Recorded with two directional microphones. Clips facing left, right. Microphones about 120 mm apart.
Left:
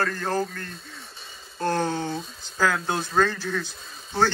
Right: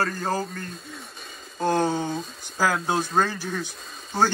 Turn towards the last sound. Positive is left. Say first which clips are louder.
# right 2 dB
turn(degrees=0)  # may be behind; listen again after turning